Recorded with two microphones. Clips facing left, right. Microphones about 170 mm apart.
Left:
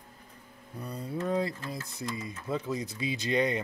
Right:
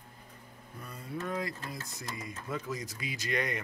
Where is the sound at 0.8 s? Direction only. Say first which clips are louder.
Left 5 dB; 35° left (ahead or behind).